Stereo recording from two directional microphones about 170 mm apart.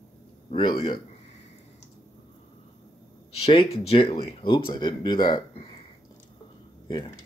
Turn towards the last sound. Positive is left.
turn(degrees=25)  # may be behind; listen again after turning